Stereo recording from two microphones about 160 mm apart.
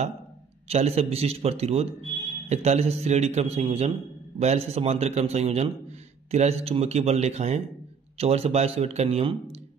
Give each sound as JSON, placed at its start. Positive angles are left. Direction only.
{"t": 0.7, "sound": "a man's voice", "side_deg": -40}